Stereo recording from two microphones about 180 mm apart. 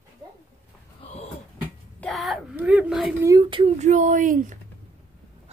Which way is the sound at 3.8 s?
45° right (ahead or behind).